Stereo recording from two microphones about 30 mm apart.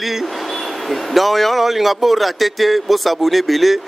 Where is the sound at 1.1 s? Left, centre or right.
Centre.